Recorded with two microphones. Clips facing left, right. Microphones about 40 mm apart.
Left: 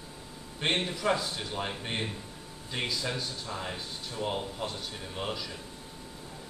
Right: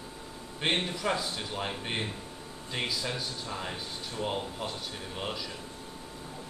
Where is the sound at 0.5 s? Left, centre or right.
Centre.